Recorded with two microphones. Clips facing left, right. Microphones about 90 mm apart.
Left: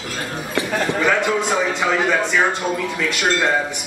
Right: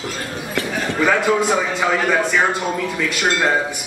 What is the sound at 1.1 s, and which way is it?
A man's voice, 5° right (ahead or behind).